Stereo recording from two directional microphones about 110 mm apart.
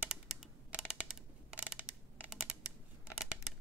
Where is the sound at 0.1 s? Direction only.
Centre (ahead or behind).